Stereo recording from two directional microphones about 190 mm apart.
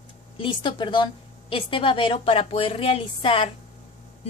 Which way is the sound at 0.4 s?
25° left (ahead or behind).